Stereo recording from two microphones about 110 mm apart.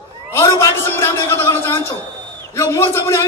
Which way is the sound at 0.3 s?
25° left (ahead or behind).